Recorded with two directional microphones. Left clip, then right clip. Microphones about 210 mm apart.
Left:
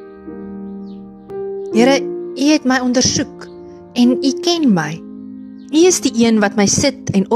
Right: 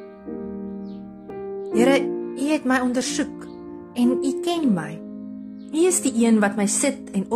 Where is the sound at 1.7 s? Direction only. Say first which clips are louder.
Left 5 dB; 40° left (ahead or behind).